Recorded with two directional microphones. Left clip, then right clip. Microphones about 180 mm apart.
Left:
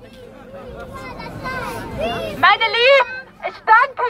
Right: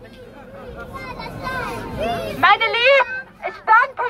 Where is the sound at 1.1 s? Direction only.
40° right (ahead or behind).